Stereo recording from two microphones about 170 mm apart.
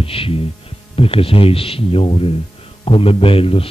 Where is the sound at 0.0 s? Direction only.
35° left (ahead or behind).